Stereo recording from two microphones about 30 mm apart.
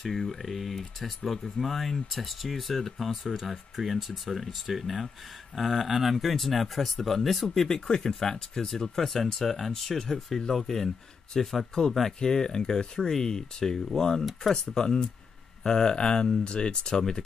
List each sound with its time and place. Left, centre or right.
0.0 s speech: centre
7.5 s speech: centre
11.7 s speech: left